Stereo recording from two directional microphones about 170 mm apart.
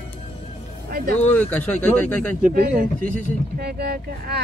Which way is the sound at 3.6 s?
75° right (ahead or behind).